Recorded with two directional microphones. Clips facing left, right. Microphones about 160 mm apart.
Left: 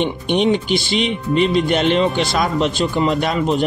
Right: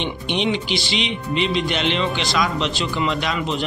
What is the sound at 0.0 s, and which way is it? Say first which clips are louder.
Speech: left 6 dB; 45° left (ahead or behind).